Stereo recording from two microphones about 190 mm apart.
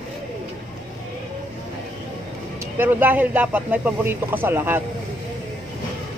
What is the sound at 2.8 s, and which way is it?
Speech, 10° right (ahead or behind).